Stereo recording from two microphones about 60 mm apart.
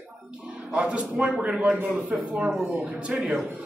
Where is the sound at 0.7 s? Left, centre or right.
Centre.